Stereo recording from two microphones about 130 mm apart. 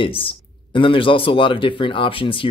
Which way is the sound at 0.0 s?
45° left (ahead or behind).